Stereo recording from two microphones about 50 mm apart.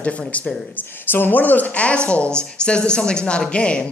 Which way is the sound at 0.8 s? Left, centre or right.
Left.